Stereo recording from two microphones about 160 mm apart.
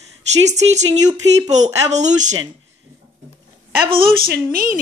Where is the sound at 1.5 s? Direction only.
45° right (ahead or behind).